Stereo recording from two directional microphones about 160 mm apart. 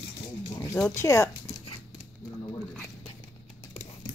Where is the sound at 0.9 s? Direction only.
15° left (ahead or behind).